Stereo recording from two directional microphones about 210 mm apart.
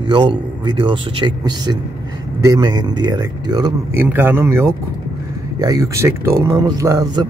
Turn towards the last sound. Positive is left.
turn(degrees=-15)  # may be behind; listen again after turning